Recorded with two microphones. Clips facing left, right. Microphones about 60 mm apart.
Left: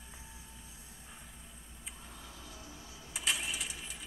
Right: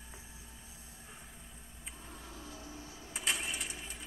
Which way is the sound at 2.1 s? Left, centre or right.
Right.